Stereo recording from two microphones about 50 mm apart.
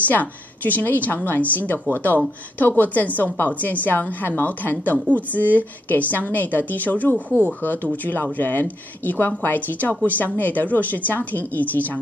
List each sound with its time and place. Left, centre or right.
0.1 s a woman's voice: left
7.2 s speech: right
7.6 s a woman's voice: left